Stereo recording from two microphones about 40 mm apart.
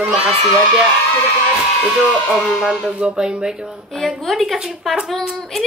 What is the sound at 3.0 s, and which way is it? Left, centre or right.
Speech, right.